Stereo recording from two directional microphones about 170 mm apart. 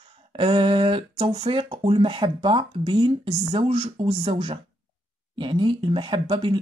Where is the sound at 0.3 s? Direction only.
30° right (ahead or behind).